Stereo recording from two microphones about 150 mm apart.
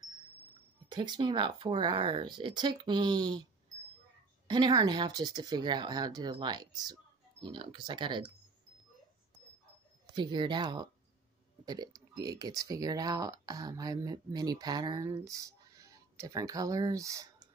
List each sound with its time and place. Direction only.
0.8 s speech: 30° right (ahead or behind)
4.5 s speech: 30° right (ahead or behind)
10.1 s speech: 30° right (ahead or behind)